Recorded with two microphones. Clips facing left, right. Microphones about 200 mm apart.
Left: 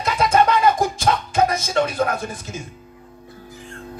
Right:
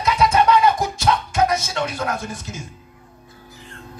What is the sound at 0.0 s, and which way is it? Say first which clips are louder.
Music: even; 50° left (ahead or behind).